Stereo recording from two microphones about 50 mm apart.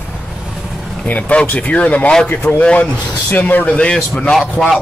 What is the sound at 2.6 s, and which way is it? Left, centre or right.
Speech, left.